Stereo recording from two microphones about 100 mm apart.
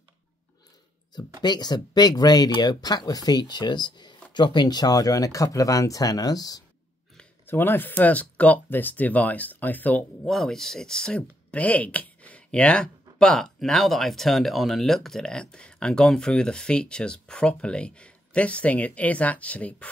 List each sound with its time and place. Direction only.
1.4 s speech: 45° left (ahead or behind)
7.4 s speech: 20° left (ahead or behind)
10.2 s speech: 5° left (ahead or behind)